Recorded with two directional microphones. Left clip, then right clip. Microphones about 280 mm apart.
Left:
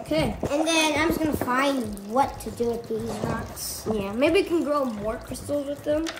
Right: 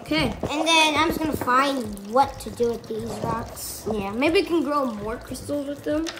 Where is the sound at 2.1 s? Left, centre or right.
Right.